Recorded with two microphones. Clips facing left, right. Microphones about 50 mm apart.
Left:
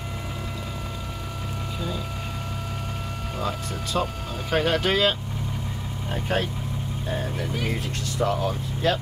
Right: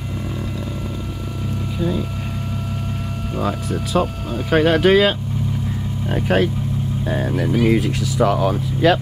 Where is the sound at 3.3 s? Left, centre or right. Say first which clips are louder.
Right 7 dB; centre.